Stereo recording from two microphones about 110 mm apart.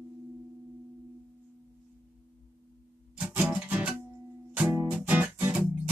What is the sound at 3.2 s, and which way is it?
Music, 10° right (ahead or behind).